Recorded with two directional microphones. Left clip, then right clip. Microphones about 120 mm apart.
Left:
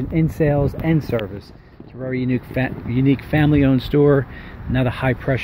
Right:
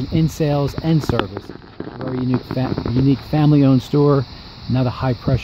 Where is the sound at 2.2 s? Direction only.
40° right (ahead or behind).